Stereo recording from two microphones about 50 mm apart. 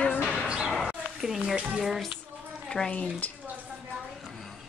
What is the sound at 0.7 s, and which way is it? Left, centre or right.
A woman's voice, centre.